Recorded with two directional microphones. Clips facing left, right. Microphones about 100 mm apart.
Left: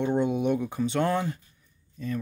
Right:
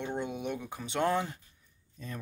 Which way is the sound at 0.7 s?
10° right (ahead or behind).